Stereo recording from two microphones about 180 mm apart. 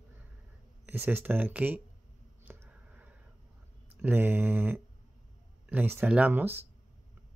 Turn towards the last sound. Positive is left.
turn(degrees=-10)  # may be behind; listen again after turning